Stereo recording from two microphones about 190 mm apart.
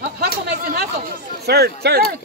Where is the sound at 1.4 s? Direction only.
55° right (ahead or behind).